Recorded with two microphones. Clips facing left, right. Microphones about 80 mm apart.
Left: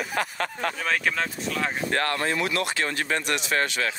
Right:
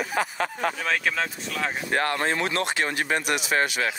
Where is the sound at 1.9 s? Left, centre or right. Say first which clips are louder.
Right 3 dB; centre.